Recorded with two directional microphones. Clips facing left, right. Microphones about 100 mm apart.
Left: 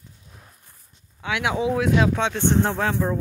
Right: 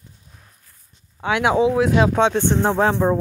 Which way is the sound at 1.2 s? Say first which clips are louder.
Right 6 dB; 35° right (ahead or behind).